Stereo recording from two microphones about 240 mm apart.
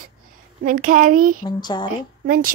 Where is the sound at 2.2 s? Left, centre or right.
Right.